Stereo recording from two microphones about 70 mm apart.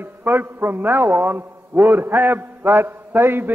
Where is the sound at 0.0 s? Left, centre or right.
Right.